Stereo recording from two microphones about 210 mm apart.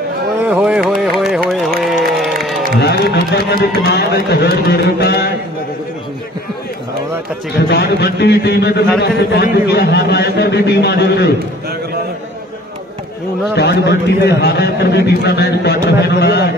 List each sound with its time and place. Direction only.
0.4 s carnatic music: 5° right (ahead or behind)
2.1 s a sound: centre (ahead or behind)
2.8 s a man's voice: 50° left (ahead or behind)
7.5 s a man's voice: 50° left (ahead or behind)
13.6 s a man's voice: 55° left (ahead or behind)